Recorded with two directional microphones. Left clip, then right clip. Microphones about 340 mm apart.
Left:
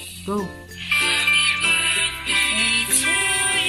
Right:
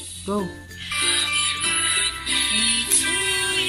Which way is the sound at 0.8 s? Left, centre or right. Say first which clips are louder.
Left 4 dB; centre.